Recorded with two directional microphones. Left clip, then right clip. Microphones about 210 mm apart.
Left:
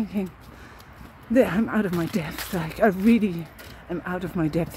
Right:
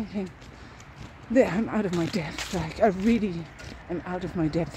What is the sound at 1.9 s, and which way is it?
Speech, 20° left (ahead or behind).